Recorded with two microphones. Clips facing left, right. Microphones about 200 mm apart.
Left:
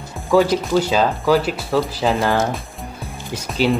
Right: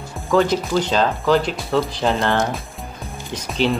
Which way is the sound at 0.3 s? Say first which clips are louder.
Left 2 dB; 10° left (ahead or behind).